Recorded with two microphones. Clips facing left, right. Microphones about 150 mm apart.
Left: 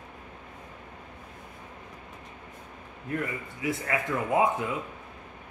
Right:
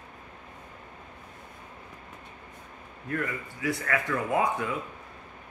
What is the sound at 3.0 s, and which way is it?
Speech, 20° left (ahead or behind).